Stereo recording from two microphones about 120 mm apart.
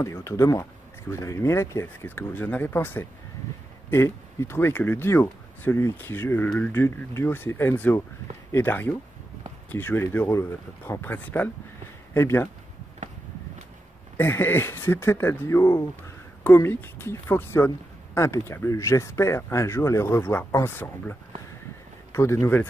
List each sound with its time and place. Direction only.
0.0 s speech: 25° left (ahead or behind)
14.1 s speech: 20° left (ahead or behind)